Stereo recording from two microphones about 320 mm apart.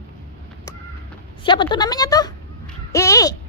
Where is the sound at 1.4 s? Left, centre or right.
Centre.